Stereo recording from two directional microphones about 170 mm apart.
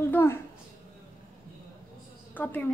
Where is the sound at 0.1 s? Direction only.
15° left (ahead or behind).